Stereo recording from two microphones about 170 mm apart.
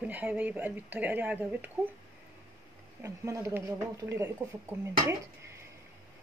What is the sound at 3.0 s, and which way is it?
Speech, 15° right (ahead or behind).